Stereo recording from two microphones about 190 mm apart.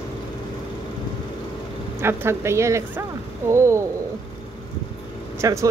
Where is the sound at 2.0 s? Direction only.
15° right (ahead or behind).